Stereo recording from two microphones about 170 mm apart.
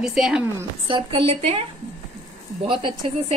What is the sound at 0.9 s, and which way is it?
Speech, 35° right (ahead or behind).